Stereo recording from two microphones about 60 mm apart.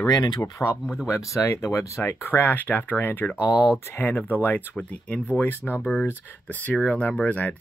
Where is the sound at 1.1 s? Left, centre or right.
Left.